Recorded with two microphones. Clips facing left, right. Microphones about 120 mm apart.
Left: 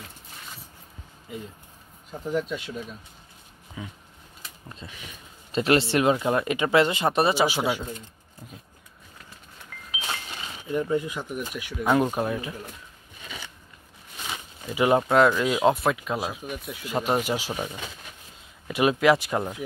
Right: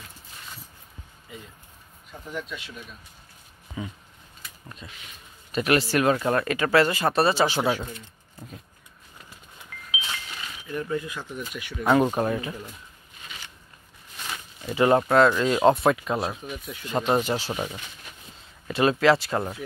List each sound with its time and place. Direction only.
2.0 s speech: 40° left (ahead or behind)
3.8 s speech: centre (ahead or behind)
4.4 s a sound: 25° left (ahead or behind)
5.5 s speech: 25° left (ahead or behind); by 7.8 s 10° left (ahead or behind)
10.3 s speech: 25° left (ahead or behind)
11.5 s speech: 5° left (ahead or behind)
14.8 s speech: 10° left (ahead or behind)
15.4 s speech: 5° left (ahead or behind)